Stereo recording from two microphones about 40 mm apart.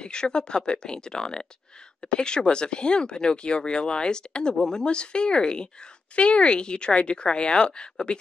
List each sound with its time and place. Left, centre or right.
0.0 s speech: left